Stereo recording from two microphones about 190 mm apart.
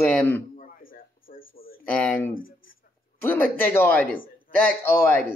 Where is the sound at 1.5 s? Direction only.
50° left (ahead or behind).